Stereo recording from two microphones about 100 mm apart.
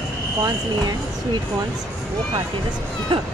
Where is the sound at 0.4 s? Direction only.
40° right (ahead or behind).